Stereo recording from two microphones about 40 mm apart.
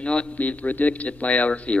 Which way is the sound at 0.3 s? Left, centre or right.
Left.